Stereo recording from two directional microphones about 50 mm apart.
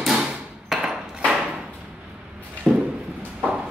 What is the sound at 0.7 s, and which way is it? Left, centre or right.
Hammer, centre.